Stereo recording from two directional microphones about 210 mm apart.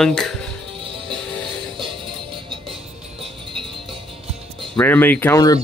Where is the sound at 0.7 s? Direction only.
25° right (ahead or behind).